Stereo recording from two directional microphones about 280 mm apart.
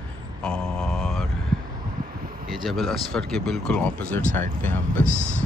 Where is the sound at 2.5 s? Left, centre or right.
Centre.